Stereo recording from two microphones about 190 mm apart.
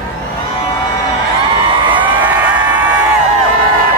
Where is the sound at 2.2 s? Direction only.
10° right (ahead or behind).